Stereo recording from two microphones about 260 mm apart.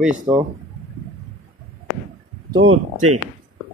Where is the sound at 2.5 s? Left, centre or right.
Right.